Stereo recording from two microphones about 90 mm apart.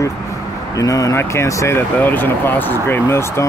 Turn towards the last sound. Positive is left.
turn(degrees=30)  # may be behind; listen again after turning